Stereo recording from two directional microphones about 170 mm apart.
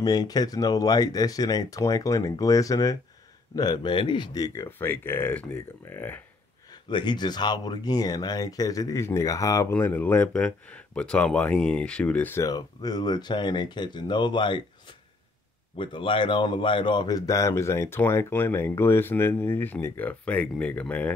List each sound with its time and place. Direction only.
0.0 s speech: 20° left (ahead or behind)
6.9 s speech: 25° left (ahead or behind)
15.7 s speech: 30° left (ahead or behind); by 21.1 s 10° left (ahead or behind)